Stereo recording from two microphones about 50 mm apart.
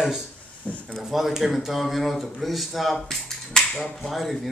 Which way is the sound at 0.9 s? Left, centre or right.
Centre.